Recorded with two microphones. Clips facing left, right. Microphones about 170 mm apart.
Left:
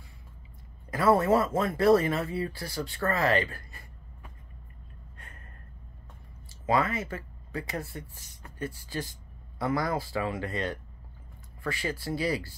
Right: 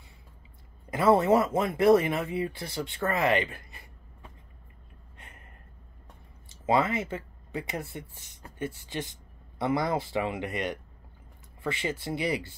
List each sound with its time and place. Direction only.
0.8 s speech: 20° right (ahead or behind)
5.1 s a sound: 20° right (ahead or behind)
6.5 s speech: 20° right (ahead or behind)